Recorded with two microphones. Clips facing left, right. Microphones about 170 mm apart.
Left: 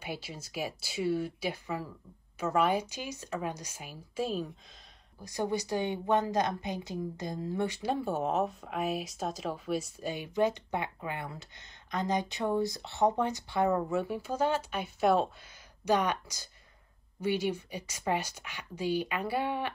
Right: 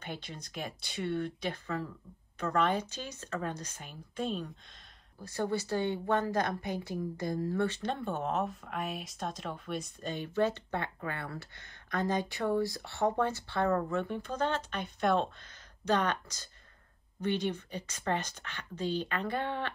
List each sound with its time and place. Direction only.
0.0 s a woman's voice: 5° left (ahead or behind)
5.2 s a woman's voice: 15° left (ahead or behind)